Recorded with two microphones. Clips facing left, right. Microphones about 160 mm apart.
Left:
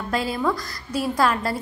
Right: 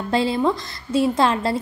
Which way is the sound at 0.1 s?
25° right (ahead or behind).